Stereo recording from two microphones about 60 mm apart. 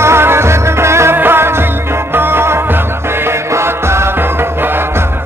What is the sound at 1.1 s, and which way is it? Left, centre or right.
Music, right.